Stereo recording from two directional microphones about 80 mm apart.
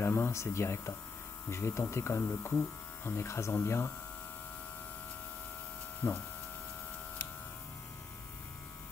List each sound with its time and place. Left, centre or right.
0.0 s speech: left
5.9 s speech: left